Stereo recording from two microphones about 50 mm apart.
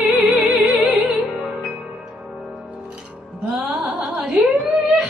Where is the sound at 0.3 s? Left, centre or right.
Right.